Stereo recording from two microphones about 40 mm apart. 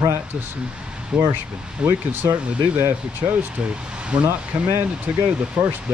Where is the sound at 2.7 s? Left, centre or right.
Right.